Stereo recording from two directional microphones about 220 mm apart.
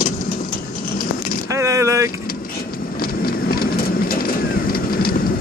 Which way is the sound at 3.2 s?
40° left (ahead or behind).